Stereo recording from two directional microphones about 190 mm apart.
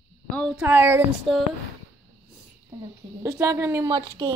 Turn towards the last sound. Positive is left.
turn(degrees=-20)  # may be behind; listen again after turning